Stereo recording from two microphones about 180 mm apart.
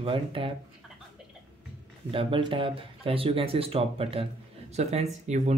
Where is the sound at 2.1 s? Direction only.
30° right (ahead or behind).